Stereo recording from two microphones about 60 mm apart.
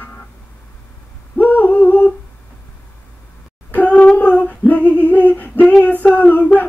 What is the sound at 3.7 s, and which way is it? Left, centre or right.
Female singing, left.